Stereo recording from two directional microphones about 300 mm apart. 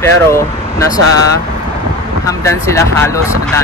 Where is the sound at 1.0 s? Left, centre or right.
Right.